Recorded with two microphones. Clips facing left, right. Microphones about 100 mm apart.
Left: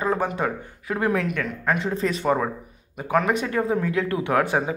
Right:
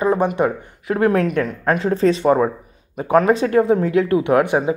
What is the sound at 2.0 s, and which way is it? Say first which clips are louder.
Speech: right 8 dB; 25° right (ahead or behind).